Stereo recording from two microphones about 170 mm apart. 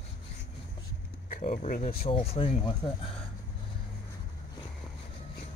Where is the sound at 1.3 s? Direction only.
45° left (ahead or behind).